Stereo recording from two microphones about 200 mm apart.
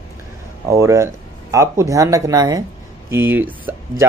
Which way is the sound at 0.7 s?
15° right (ahead or behind).